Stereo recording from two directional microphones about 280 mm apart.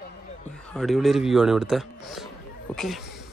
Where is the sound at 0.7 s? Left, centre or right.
Centre.